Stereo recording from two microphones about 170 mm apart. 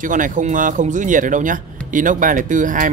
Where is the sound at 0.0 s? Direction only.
50° right (ahead or behind).